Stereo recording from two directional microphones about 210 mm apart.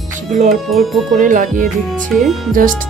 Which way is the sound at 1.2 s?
40° right (ahead or behind).